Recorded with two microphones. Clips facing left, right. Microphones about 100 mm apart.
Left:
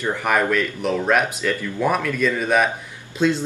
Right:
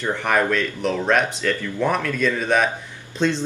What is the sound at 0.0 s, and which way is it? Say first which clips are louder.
Speech: even; 5° left (ahead or behind).